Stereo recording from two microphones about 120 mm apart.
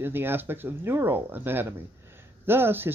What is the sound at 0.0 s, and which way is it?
Speech, 20° right (ahead or behind).